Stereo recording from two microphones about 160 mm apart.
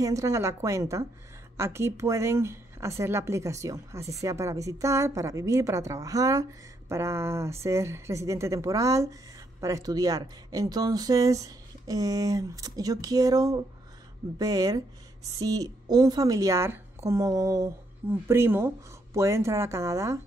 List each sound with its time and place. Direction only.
0.0 s a woman's voice: 20° right (ahead or behind)